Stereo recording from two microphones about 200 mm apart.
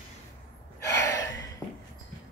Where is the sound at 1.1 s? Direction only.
15° left (ahead or behind).